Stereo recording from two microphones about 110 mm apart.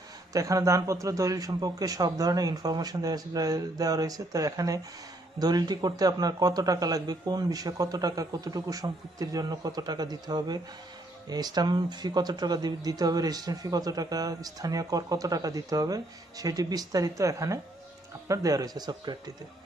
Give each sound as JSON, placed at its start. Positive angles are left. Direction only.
{"t": 0.3, "sound": "speech", "side_deg": -30}